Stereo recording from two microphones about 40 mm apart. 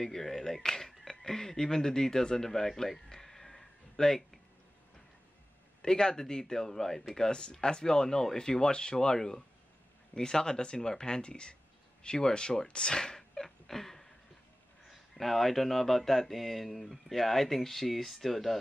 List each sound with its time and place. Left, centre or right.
0.0 s speech: centre
5.8 s speech: centre